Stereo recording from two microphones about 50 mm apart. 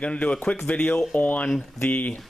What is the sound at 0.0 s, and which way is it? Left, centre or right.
Speech, left.